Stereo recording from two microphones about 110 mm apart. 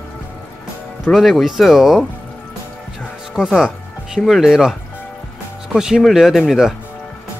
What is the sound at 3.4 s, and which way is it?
Speech, 5° right (ahead or behind).